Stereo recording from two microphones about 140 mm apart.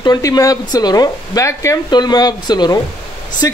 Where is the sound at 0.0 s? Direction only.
30° left (ahead or behind).